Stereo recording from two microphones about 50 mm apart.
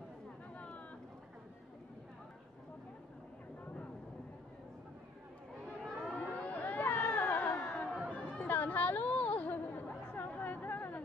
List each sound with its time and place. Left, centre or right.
0.6 s vehicle: left
5.9 s civil defense siren: centre
6.1 s a sound: left
7.5 s chatter: left
8.1 s chatter: left